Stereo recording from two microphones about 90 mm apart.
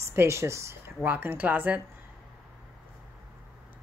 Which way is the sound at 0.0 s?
30° right (ahead or behind).